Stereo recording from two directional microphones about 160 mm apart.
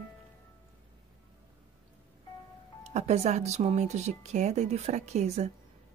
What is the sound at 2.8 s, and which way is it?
Speech, 45° right (ahead or behind).